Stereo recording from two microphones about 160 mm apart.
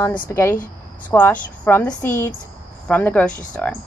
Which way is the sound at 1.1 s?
15° left (ahead or behind).